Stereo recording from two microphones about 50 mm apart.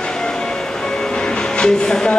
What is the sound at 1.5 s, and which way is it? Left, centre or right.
Speech, centre.